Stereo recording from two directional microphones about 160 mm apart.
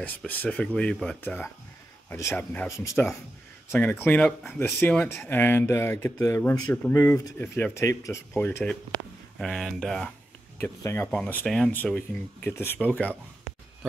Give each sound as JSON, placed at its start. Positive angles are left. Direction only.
{"t": 0.0, "sound": "speech", "side_deg": 10}
{"t": 10.6, "sound": "speech", "side_deg": 15}